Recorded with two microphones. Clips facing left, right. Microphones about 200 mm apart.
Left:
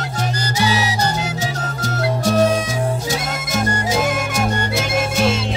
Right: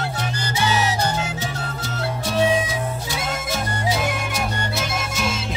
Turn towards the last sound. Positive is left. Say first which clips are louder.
# left 5 dB
turn(degrees=45)  # may be behind; listen again after turning